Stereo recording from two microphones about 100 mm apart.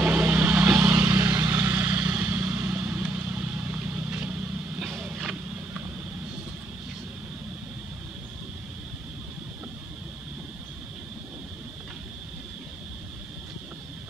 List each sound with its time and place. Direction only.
0.0 s vehicle: 15° right (ahead or behind)